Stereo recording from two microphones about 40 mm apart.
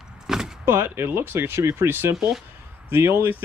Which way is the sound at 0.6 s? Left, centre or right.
Right.